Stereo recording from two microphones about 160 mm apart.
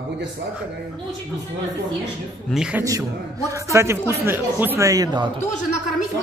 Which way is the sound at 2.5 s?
5° right (ahead or behind).